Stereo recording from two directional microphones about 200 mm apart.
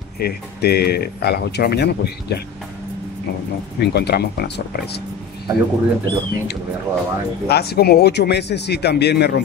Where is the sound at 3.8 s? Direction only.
55° left (ahead or behind).